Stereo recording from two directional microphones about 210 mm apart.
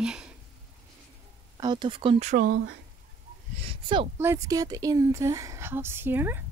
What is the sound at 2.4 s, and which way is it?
Speech, 60° right (ahead or behind).